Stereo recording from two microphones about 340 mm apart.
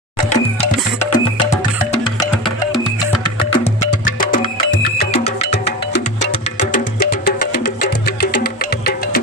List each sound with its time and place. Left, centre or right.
0.3 s music: centre
3.3 s music: centre